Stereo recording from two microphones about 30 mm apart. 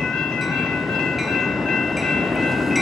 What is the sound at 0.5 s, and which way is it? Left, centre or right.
Train, centre.